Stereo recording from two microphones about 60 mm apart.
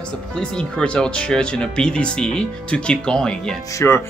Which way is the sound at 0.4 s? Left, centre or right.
Centre.